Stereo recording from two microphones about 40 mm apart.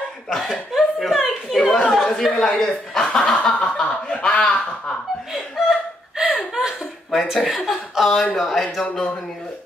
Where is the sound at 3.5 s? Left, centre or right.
Left.